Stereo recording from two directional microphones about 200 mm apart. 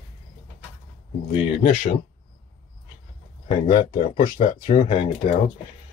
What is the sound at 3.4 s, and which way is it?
Speech, 35° left (ahead or behind).